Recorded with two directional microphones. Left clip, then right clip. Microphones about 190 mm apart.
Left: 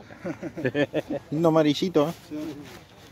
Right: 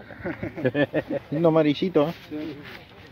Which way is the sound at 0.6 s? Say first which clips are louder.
Right 2 dB; 40° right (ahead or behind).